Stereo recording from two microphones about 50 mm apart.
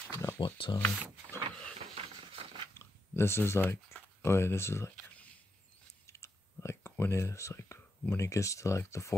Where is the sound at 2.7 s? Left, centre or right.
Left.